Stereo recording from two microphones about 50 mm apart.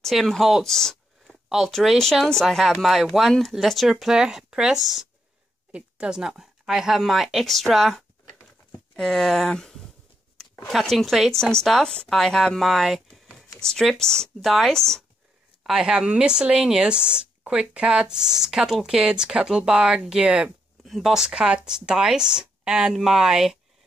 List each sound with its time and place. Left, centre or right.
0.0 s speech: centre
2.4 s speech: centre
4.0 s speech: centre
9.0 s speech: centre
11.8 s speech: centre
12.6 s a sound: centre
13.6 s speech: centre
15.6 s speech: centre